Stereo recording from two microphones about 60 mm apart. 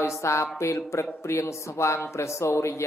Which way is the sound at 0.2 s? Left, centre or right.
Left.